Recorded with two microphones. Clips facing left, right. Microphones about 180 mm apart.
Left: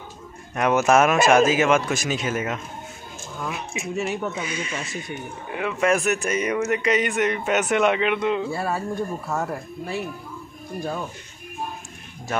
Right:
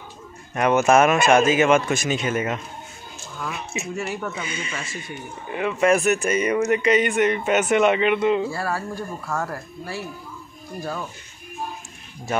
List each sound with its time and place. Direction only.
0.6 s speech: centre (ahead or behind)
8.6 s speech: 20° left (ahead or behind)